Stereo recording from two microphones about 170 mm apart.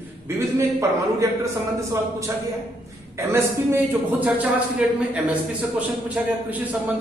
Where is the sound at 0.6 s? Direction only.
20° right (ahead or behind).